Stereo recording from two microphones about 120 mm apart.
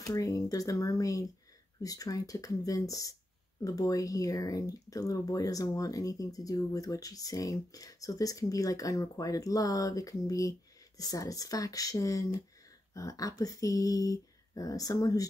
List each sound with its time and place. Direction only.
0.0 s speech: 30° left (ahead or behind)